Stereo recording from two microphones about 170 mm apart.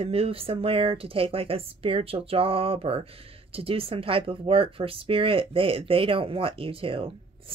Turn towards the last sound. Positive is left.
turn(degrees=-30)  # may be behind; listen again after turning